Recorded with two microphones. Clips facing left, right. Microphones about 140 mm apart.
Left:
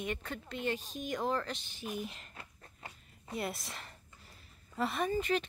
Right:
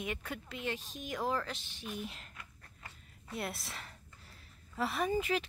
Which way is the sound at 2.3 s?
25° left (ahead or behind).